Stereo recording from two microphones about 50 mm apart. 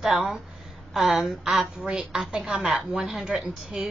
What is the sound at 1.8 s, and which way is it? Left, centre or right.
A woman's voice, centre.